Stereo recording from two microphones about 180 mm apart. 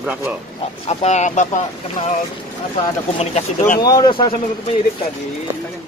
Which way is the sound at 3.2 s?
35° left (ahead or behind).